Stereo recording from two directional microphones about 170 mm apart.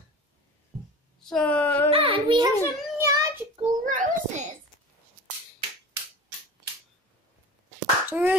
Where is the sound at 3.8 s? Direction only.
45° right (ahead or behind).